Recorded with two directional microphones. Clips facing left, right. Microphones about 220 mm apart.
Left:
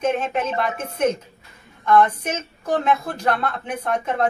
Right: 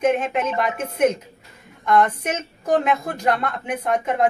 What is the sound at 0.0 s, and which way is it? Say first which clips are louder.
Speech: right 2 dB; 15° right (ahead or behind).